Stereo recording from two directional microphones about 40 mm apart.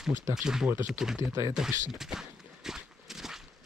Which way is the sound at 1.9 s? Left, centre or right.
Centre.